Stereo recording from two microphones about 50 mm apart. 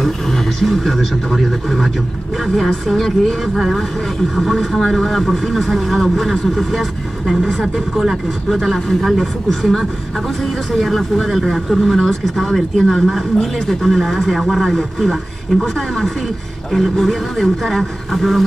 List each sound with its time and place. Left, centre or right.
0.0 s speech: centre
3.5 s speech: centre